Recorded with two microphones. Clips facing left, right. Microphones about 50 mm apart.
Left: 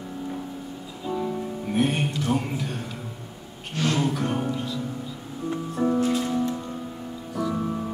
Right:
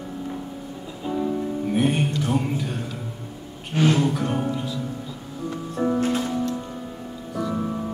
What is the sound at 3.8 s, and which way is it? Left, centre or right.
Music, centre.